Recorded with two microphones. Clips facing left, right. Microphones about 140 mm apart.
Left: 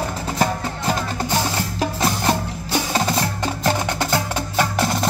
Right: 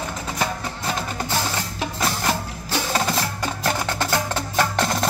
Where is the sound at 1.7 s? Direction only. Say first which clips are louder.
Left 5 dB; 25° left (ahead or behind).